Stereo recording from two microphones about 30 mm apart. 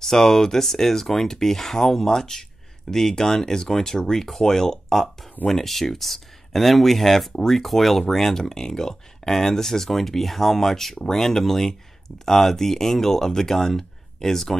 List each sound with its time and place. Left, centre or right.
0.0 s speech: centre
3.2 s speech: centre